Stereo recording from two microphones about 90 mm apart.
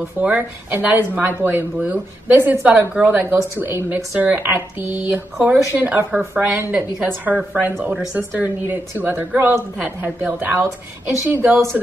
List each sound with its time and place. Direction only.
0.2 s speech: 20° right (ahead or behind)